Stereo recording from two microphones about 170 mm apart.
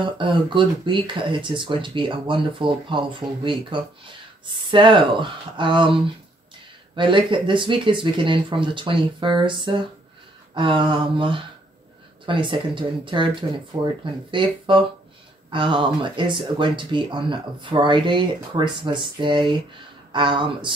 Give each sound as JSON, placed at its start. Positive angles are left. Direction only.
{"t": 0.0, "sound": "speech", "side_deg": -30}
{"t": 7.0, "sound": "speech", "side_deg": -30}